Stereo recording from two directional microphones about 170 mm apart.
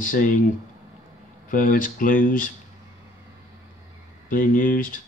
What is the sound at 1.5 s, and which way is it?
Speech, 50° left (ahead or behind).